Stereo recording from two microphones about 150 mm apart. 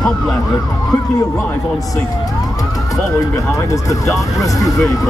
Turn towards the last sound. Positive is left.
turn(degrees=20)  # may be behind; listen again after turning